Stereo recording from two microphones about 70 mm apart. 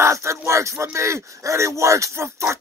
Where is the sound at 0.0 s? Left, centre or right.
Right.